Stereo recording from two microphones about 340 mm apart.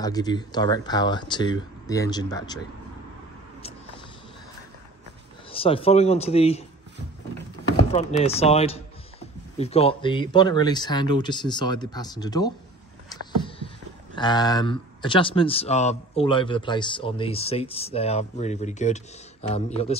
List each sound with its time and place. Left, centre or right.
0.0 s speech: centre
5.5 s speech: centre
7.9 s speech: centre
13.1 s vehicle: centre
14.1 s speech: centre